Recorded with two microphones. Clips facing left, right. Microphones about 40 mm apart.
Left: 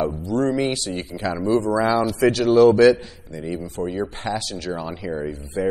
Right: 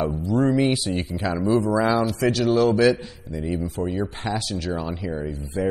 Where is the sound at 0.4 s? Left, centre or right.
Right.